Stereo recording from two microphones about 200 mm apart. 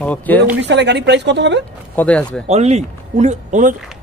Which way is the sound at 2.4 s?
35° right (ahead or behind).